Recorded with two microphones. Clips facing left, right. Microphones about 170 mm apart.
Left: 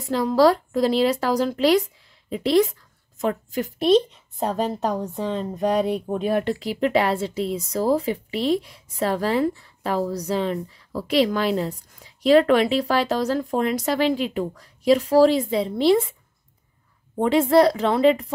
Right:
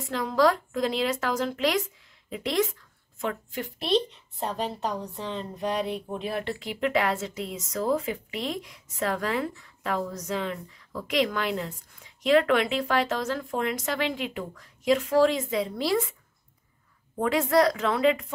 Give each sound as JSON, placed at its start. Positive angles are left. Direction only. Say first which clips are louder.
{"t": 0.0, "sound": "a woman's voice", "louder": "left 6 dB", "side_deg": 35}
{"t": 17.2, "sound": "a woman's voice", "louder": "left 6 dB", "side_deg": 25}